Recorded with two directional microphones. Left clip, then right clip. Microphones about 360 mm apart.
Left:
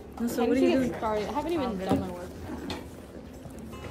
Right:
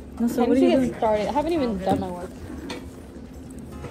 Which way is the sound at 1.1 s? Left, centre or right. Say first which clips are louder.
Right 7 dB; right.